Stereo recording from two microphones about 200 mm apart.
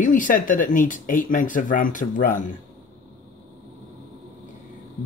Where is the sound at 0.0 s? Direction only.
40° left (ahead or behind).